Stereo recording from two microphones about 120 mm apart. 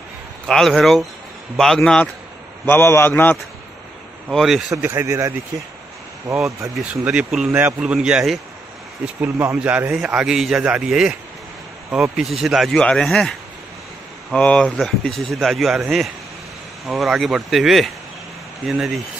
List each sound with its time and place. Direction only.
0.5 s speech: 5° left (ahead or behind)
2.6 s a man's voice: 20° left (ahead or behind)
4.3 s speech: centre (ahead or behind)
4.8 s speech: 20° right (ahead or behind)
6.8 s a man's voice: 10° right (ahead or behind)
14.3 s speech: 10° left (ahead or behind)